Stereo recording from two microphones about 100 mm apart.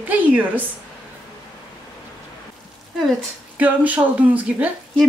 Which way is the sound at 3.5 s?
15° right (ahead or behind).